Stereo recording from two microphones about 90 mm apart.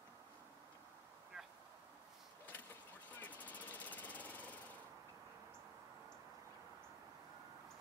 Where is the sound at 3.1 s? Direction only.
20° left (ahead or behind).